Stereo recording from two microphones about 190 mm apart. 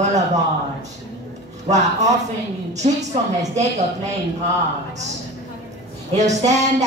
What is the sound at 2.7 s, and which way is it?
Speech, 35° right (ahead or behind).